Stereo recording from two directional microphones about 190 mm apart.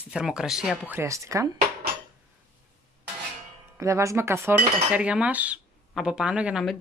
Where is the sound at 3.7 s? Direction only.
15° right (ahead or behind).